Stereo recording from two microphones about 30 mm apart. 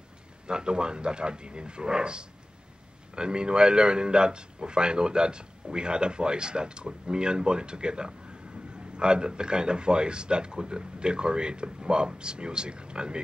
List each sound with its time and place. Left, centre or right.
0.5 s a man's voice: right